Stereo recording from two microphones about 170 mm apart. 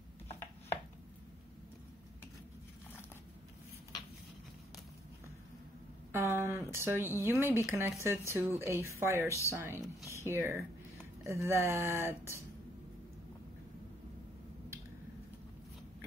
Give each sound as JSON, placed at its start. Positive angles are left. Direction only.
{"t": 6.1, "sound": "speech", "side_deg": -15}